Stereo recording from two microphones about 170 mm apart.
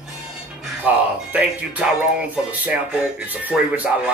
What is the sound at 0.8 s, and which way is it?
Speech, 5° right (ahead or behind).